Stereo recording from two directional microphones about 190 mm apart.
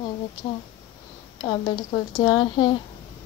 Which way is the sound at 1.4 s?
20° left (ahead or behind).